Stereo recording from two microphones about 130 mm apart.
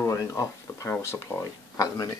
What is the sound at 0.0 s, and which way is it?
Speech, 25° left (ahead or behind).